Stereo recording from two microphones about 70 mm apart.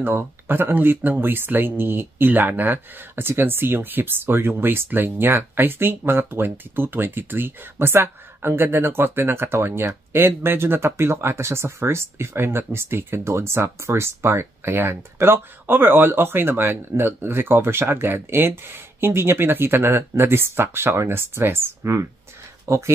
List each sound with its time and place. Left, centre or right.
0.0 s speech: right